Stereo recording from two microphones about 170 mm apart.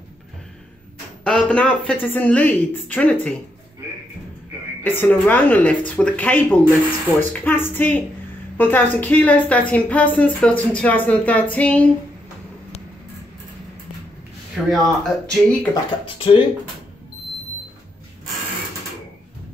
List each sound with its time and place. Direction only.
1.2 s a woman's voice: 5° left (ahead or behind)
4.8 s a woman's voice: 10° left (ahead or behind)
14.5 s speech: centre (ahead or behind)
15.7 s speech: 30° left (ahead or behind)